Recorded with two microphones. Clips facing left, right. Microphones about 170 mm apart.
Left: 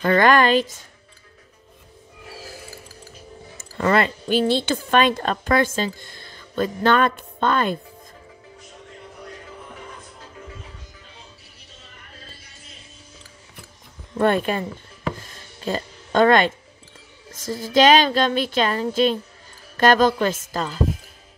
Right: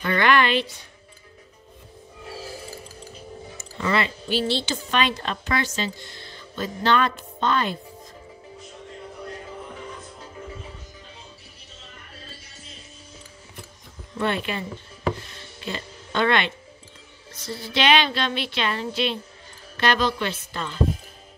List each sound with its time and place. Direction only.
0.0 s a woman's voice: 45° left (ahead or behind)
3.5 s speech: 50° left (ahead or behind)
14.1 s a woman's voice: 45° left (ahead or behind)
15.2 s music: 45° left (ahead or behind)
17.3 s a woman's voice: 45° left (ahead or behind)